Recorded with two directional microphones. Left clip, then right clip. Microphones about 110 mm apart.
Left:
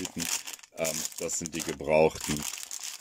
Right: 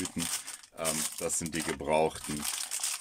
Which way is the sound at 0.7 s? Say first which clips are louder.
Left 2 dB; 25° left (ahead or behind).